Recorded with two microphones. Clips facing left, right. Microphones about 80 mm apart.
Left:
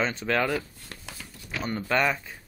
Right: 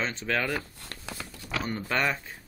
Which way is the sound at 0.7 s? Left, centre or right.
Right.